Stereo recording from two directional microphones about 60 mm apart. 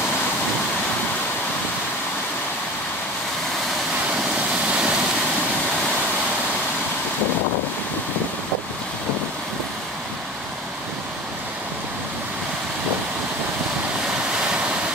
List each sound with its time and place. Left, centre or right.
4.6 s waterfall: centre